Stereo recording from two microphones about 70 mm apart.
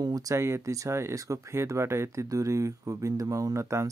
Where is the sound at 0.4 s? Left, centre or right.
Right.